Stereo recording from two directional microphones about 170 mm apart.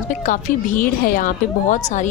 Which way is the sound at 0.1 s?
50° left (ahead or behind).